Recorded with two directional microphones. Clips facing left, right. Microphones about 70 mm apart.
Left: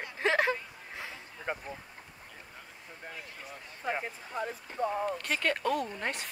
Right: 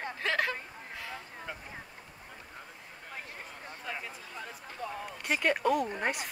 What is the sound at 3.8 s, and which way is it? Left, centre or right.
Speech, left.